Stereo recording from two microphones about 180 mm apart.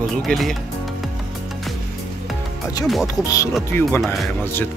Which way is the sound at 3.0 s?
20° left (ahead or behind).